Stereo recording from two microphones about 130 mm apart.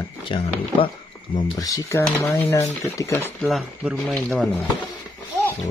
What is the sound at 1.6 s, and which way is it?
Speech, 25° left (ahead or behind).